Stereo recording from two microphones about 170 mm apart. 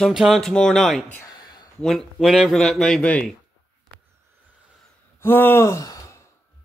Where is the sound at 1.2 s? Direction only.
25° left (ahead or behind).